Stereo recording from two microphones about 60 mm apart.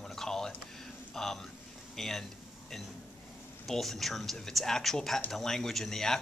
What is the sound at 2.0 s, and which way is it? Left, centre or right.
Speech, centre.